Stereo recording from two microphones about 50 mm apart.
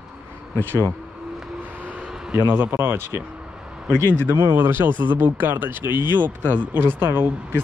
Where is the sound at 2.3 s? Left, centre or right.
Right.